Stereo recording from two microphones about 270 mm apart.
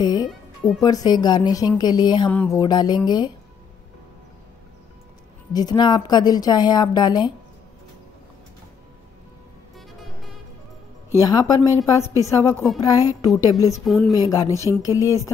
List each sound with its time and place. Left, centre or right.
0.0 s music: centre
0.7 s a woman's voice: centre
5.5 s a woman's voice: centre
11.1 s a woman's voice: centre
13.8 s speech: centre
14.1 s a woman's voice: centre